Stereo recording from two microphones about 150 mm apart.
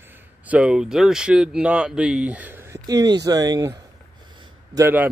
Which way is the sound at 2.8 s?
25° right (ahead or behind).